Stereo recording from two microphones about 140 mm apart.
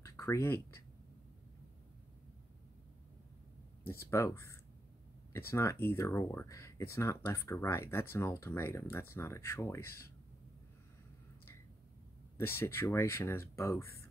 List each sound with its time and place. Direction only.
0.0 s a sound: 20° left (ahead or behind)
4.1 s speech: 20° left (ahead or behind)
12.4 s speech: 15° left (ahead or behind)